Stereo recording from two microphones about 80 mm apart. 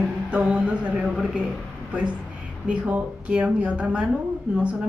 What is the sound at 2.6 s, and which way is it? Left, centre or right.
A woman's voice, centre.